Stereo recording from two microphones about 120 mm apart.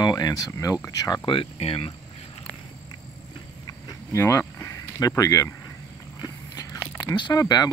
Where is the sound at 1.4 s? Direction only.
50° left (ahead or behind).